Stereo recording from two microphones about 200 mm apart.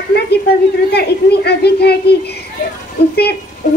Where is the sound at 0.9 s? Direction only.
55° left (ahead or behind).